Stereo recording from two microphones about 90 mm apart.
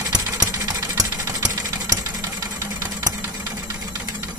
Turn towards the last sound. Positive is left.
turn(degrees=-40)  # may be behind; listen again after turning